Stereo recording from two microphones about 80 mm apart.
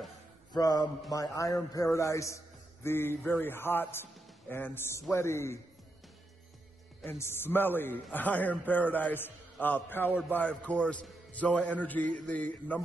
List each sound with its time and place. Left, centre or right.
0.5 s mantra: left
1.1 s a man's voice: left
7.2 s a man's voice: left